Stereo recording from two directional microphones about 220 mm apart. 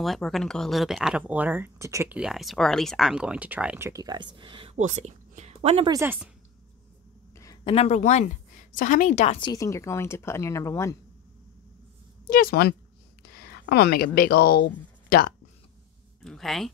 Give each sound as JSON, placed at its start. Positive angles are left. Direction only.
{"t": 0.0, "sound": "speech", "side_deg": 0}
{"t": 5.9, "sound": "speech", "side_deg": -10}
{"t": 7.3, "sound": "a sound", "side_deg": 15}
{"t": 7.7, "sound": "a woman's voice", "side_deg": 30}
{"t": 12.3, "sound": "speech", "side_deg": 40}
{"t": 16.2, "sound": "speech", "side_deg": 0}